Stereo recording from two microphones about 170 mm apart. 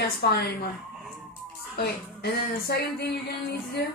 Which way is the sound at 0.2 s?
65° left (ahead or behind).